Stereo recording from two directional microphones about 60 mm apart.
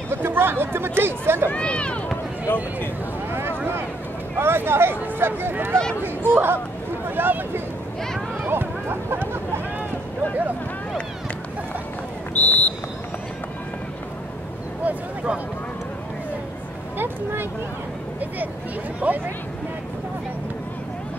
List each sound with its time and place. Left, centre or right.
0.1 s speech: right
1.5 s speech: centre
2.4 s speech: left
3.3 s boat: right
4.4 s speech: right
8.5 s a sound: right
12.4 s a sound: left
14.8 s speech: right
17.0 s speech: right
18.9 s speech: right